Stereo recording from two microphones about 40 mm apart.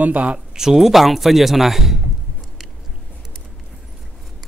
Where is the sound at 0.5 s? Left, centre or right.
Centre.